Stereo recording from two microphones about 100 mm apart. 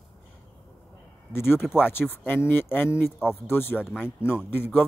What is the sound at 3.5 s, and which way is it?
Speech, 20° left (ahead or behind).